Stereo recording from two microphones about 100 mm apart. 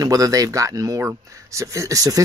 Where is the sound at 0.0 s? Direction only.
35° right (ahead or behind).